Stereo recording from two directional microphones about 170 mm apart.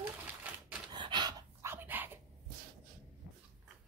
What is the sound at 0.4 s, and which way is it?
Typewriter, 5° right (ahead or behind).